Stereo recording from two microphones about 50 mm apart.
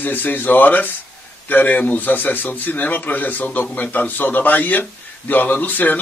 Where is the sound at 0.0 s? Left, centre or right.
Left.